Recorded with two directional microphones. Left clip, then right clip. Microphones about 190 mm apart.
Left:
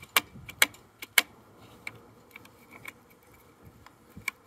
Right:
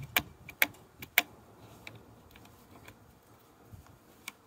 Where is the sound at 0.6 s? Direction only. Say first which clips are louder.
Left 5 dB; 10° left (ahead or behind).